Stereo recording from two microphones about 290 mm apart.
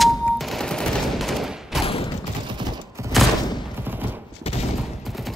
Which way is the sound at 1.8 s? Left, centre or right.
Centre.